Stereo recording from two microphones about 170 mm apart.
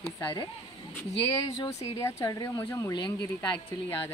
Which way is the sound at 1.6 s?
20° left (ahead or behind).